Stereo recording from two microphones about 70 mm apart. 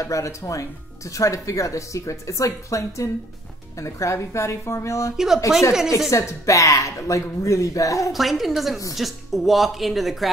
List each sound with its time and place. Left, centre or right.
0.0 s speech: left
5.1 s speech: centre
6.0 s speech: left
8.1 s speech: centre